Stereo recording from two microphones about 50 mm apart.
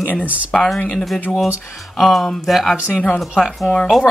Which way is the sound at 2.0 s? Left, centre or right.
Centre.